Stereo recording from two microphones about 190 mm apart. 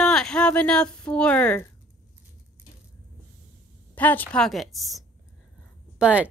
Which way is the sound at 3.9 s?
10° left (ahead or behind).